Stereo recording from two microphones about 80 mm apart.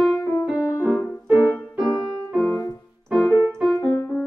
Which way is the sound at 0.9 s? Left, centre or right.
Centre.